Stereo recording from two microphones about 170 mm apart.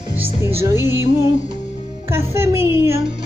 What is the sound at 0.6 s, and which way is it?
Music, 15° right (ahead or behind).